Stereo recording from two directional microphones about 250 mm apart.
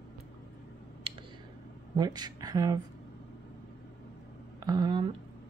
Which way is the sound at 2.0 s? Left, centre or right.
Centre.